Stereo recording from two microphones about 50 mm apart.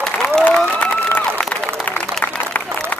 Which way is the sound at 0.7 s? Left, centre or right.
Left.